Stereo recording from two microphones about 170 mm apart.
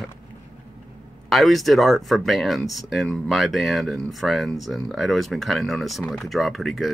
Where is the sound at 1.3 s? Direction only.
Centre (ahead or behind).